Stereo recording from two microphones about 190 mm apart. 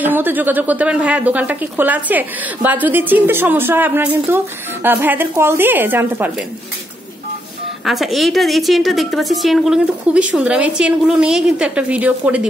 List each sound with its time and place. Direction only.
0.0 s a woman's voice: 10° right (ahead or behind)
7.8 s a woman's voice: centre (ahead or behind)